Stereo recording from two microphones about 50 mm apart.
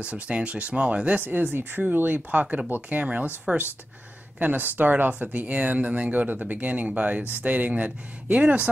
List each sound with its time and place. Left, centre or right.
0.0 s speech: right
1.2 s speech: right